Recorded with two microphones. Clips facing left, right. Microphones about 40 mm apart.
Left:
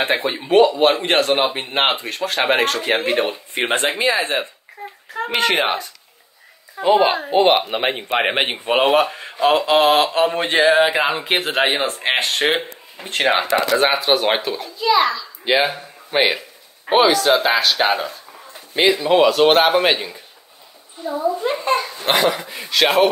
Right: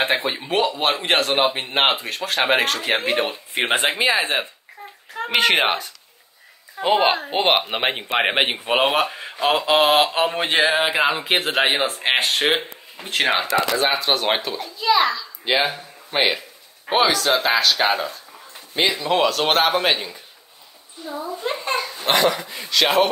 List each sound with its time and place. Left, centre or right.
0.0 s speech: centre
5.5 s speech: centre
6.8 s a child's voice: right; by 13.3 s centre
13.3 s a child's voice: centre